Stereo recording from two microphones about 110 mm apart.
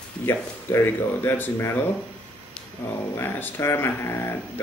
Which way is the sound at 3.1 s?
20° left (ahead or behind).